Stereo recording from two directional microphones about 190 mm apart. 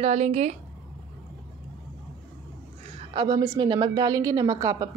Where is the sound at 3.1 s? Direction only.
25° right (ahead or behind).